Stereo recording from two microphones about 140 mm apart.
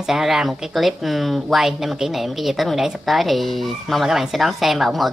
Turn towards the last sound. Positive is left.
turn(degrees=0)  # may be behind; listen again after turning